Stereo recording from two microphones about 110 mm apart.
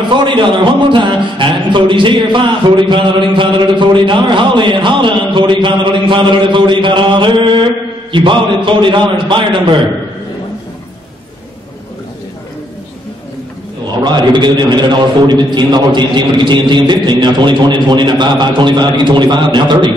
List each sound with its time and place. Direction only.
0.1 s speech: 45° right (ahead or behind)
14.0 s speech: 40° right (ahead or behind)